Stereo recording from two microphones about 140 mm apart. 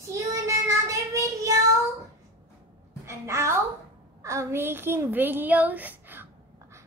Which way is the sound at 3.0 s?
20° right (ahead or behind).